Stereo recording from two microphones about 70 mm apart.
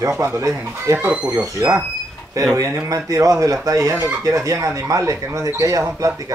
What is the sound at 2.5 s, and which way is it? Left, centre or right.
Speech, right.